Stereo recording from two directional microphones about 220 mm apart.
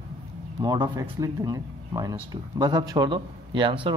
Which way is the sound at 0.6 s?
20° right (ahead or behind).